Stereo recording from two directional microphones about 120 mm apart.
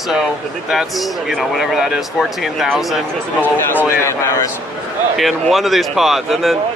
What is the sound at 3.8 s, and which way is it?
Speech, 20° left (ahead or behind).